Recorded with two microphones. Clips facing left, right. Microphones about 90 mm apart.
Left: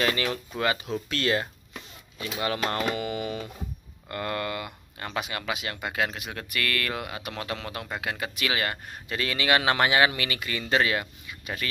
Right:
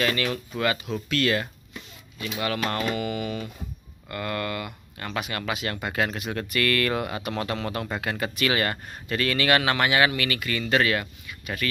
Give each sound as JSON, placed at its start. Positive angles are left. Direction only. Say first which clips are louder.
{"t": 0.0, "sound": "speech", "louder": "right 1 dB", "side_deg": 25}
{"t": 9.2, "sound": "speech", "louder": "right 2 dB", "side_deg": 15}